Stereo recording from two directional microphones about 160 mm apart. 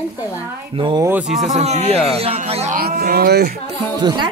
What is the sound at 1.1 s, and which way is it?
Speech, 5° right (ahead or behind).